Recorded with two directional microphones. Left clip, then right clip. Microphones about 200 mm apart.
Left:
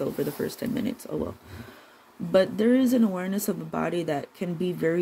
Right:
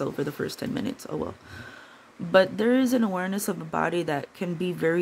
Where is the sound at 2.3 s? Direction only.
15° right (ahead or behind).